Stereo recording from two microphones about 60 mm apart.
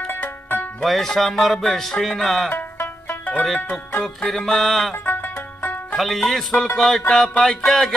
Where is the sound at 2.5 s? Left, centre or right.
Left.